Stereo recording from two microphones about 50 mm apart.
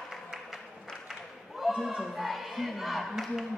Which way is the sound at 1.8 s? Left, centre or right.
Centre.